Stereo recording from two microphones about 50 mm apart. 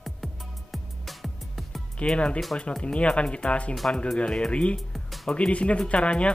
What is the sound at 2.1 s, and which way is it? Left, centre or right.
Speech, left.